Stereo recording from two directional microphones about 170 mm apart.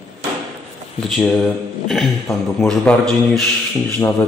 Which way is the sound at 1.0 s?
5° left (ahead or behind).